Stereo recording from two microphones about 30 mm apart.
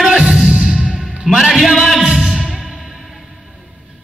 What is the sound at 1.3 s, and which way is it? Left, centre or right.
Music, centre.